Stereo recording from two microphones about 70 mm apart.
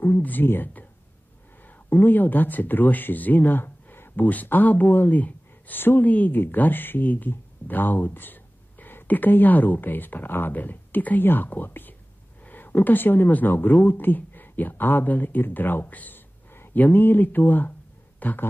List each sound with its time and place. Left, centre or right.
0.0 s speech: left